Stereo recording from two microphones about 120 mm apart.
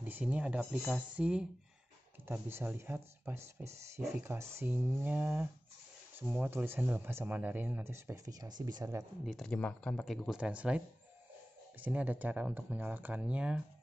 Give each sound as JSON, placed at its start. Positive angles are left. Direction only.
{"t": 0.0, "sound": "speech", "side_deg": -15}
{"t": 8.3, "sound": "speech", "side_deg": -35}
{"t": 9.2, "sound": "speech", "side_deg": 0}
{"t": 10.0, "sound": "speech", "side_deg": 0}
{"t": 11.8, "sound": "speech", "side_deg": -15}